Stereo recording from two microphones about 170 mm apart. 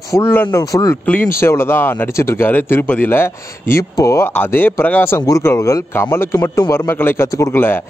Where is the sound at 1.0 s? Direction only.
10° left (ahead or behind).